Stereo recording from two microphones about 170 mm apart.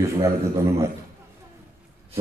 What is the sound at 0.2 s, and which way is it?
Speech, 15° right (ahead or behind).